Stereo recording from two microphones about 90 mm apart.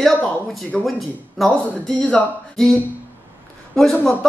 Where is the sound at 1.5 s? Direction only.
15° left (ahead or behind).